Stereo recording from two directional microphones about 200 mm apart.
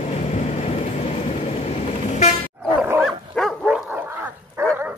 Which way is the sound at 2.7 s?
10° right (ahead or behind).